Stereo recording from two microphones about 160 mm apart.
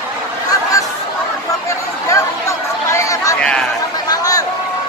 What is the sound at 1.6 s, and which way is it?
Chatter, 20° left (ahead or behind).